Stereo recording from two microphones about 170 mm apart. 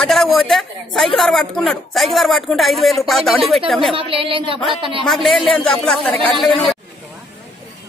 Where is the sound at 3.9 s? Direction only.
30° right (ahead or behind).